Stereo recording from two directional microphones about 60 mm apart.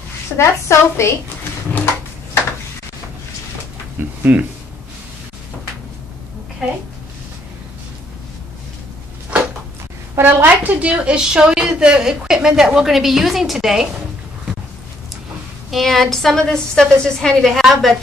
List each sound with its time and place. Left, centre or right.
0.4 s a woman's voice: left
4.2 s speech: right
6.6 s a woman's voice: centre
10.1 s a woman's voice: right; by 13.8 s centre
15.7 s a woman's voice: centre